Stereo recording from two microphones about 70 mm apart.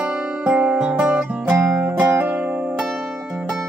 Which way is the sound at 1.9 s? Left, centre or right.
Right.